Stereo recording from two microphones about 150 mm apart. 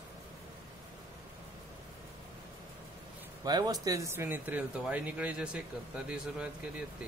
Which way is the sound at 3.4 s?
25° right (ahead or behind).